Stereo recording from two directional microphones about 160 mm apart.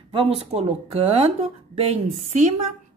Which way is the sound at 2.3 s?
45° right (ahead or behind).